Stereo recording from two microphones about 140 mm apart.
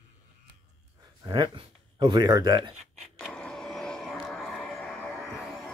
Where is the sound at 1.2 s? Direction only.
35° right (ahead or behind).